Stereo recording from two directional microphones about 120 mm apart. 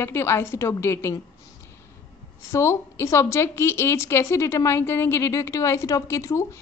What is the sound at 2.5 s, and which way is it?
A woman's voice, 25° left (ahead or behind).